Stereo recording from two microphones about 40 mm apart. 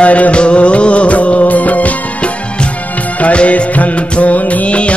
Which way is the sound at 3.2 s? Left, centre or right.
Left.